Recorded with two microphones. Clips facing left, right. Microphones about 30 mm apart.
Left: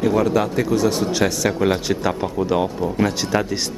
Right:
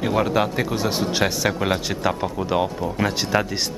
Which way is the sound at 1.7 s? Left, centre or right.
Centre.